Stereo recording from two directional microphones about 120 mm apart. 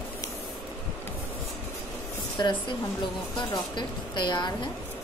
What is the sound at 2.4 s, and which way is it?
A woman's voice, 35° left (ahead or behind).